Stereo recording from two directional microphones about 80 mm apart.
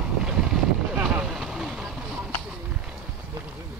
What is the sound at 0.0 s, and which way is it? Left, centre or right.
Boat, centre.